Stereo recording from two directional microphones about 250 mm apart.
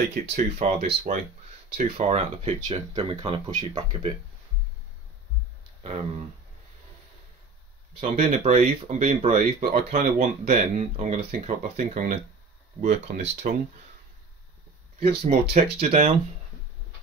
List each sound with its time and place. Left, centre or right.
0.1 s speech: right
5.8 s speech: right
8.0 s speech: right
15.0 s speech: right